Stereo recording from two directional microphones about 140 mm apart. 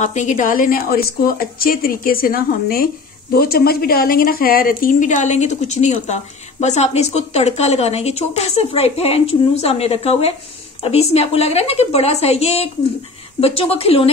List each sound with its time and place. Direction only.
0.0 s a woman's voice: 60° left (ahead or behind); by 14.1 s 45° left (ahead or behind)